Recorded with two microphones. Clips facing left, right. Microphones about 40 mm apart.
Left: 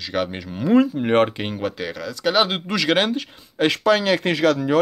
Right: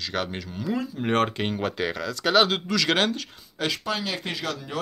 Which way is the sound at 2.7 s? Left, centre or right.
Centre.